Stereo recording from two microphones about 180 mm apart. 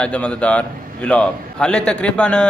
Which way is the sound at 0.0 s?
5° left (ahead or behind).